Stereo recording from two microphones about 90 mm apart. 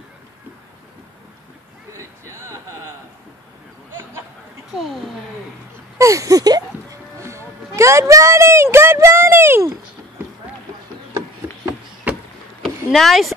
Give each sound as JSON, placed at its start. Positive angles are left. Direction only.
{"t": 1.9, "sound": "vehicle", "side_deg": -30}
{"t": 4.7, "sound": "speech", "side_deg": 0}
{"t": 5.9, "sound": "music", "side_deg": -35}
{"t": 8.7, "sound": "a sound", "side_deg": -30}
{"t": 12.6, "sound": "rowboat", "side_deg": 0}